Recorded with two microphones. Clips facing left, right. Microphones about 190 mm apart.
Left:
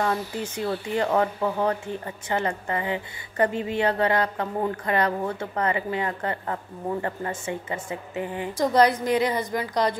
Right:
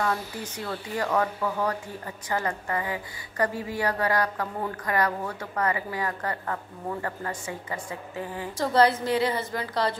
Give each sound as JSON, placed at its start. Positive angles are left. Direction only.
{"t": 0.0, "sound": "speech", "side_deg": 25}